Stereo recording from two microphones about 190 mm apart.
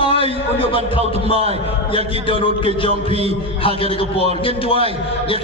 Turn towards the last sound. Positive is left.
turn(degrees=30)  # may be behind; listen again after turning